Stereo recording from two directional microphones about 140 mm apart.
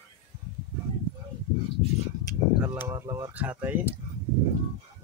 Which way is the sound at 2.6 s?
20° right (ahead or behind).